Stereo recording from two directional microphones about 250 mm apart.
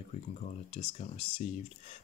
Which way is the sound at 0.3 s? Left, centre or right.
Left.